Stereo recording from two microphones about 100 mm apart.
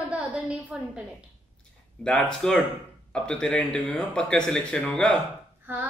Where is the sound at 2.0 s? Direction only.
5° left (ahead or behind).